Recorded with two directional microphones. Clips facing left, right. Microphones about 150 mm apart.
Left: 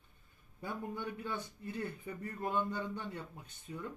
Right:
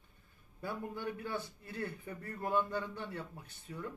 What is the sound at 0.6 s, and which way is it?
A man's voice, 20° left (ahead or behind).